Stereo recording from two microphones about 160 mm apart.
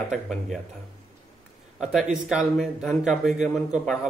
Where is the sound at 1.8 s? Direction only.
5° right (ahead or behind).